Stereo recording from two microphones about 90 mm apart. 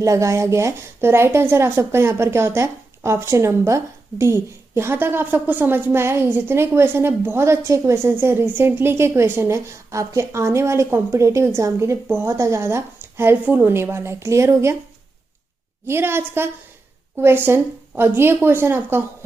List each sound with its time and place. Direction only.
0.0 s a woman's voice: 35° right (ahead or behind)
15.9 s a woman's voice: 25° right (ahead or behind)